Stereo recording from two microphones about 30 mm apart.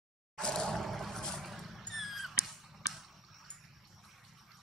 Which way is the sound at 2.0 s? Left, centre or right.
Centre.